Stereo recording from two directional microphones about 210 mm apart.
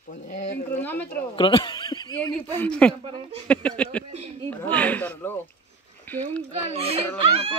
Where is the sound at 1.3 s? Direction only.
25° left (ahead or behind).